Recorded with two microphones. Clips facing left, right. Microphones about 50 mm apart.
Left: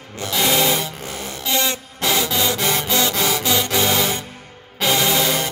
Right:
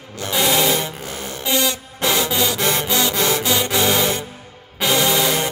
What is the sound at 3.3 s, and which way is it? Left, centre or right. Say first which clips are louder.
Music: even; right.